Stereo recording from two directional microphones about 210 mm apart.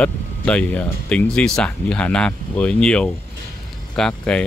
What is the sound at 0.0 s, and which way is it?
Speech, 5° left (ahead or behind).